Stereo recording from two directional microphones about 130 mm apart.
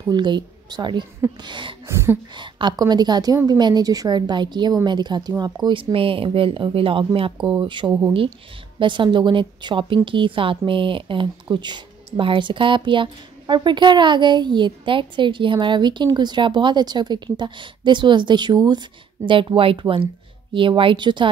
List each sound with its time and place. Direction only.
0.1 s speech: 35° right (ahead or behind)